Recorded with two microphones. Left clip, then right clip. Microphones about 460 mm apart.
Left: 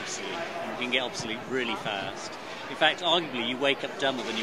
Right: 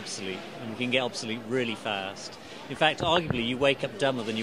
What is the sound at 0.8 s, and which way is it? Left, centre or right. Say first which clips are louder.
Speech: right 2 dB; right.